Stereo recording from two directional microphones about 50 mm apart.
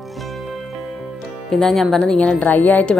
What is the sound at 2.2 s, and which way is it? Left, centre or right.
Speech, left.